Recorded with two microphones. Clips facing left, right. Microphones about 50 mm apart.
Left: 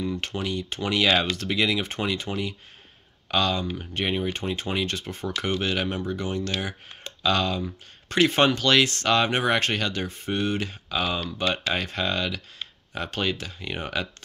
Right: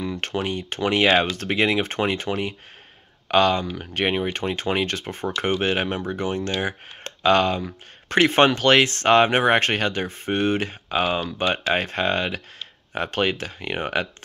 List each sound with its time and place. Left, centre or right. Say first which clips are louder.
0.0 s speech: right 3 dB; right